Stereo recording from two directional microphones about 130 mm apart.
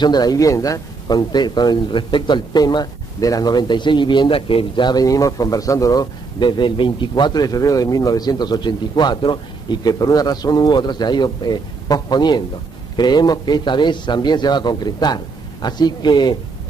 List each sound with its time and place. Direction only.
0.0 s speech: 30° left (ahead or behind)